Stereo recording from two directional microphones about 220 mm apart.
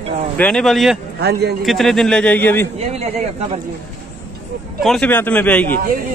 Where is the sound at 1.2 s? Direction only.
50° right (ahead or behind).